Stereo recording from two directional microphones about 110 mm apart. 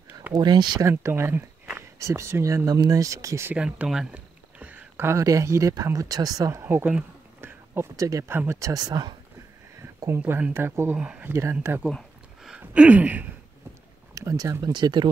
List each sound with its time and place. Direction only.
0.3 s speech: 40° right (ahead or behind)
0.8 s speech: 25° right (ahead or behind)
3.5 s speech: 10° right (ahead or behind); by 6.6 s 35° right (ahead or behind)
6.6 s speech: 20° right (ahead or behind); by 9.1 s 40° right (ahead or behind)
9.8 s speech: 25° right (ahead or behind)
12.4 s a sound: 10° right (ahead or behind)
14.1 s speech: 30° right (ahead or behind)